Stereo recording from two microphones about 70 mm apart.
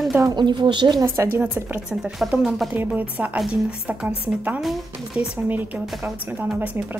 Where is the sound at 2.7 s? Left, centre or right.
Right.